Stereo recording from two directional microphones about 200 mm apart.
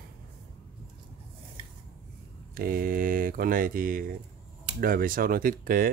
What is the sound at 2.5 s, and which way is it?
Speech, 45° right (ahead or behind).